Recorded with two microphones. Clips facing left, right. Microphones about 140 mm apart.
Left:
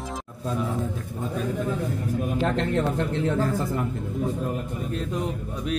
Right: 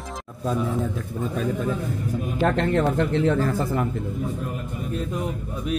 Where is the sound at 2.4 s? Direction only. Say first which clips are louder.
Right 5 dB; 65° right (ahead or behind).